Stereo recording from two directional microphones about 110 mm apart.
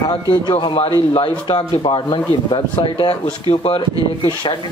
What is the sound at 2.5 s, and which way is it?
Speech, 60° left (ahead or behind).